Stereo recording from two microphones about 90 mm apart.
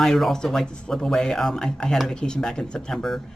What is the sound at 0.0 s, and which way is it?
Speech, 5° left (ahead or behind).